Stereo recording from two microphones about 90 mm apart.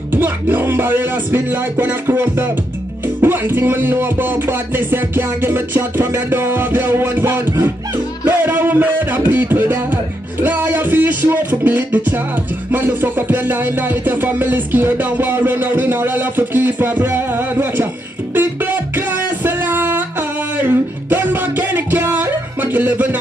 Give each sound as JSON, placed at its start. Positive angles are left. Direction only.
{"t": 0.1, "sound": "music", "side_deg": -25}